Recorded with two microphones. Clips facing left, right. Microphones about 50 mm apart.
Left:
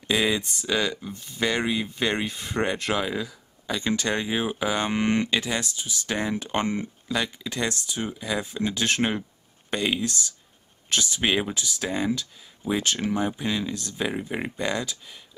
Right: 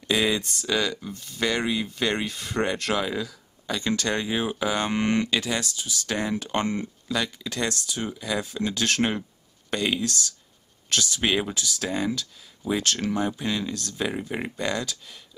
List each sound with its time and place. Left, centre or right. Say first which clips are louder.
0.1 s speech: even; centre